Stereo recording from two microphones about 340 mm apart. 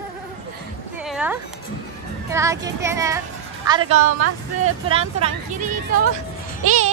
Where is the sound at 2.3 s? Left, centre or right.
Centre.